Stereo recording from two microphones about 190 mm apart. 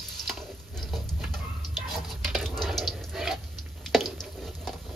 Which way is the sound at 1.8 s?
Centre (ahead or behind).